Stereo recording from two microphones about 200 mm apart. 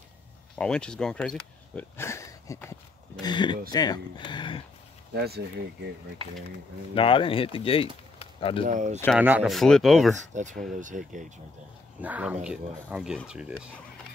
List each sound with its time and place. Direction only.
0.6 s speech: 5° left (ahead or behind); by 4.6 s 25° left (ahead or behind)
5.1 s speech: 50° right (ahead or behind)
7.0 s speech: 25° left (ahead or behind)
8.6 s speech: 40° right (ahead or behind)
9.2 s speech: 5° right (ahead or behind)
10.3 s speech: 40° right (ahead or behind)
12.0 s speech: 5° right (ahead or behind)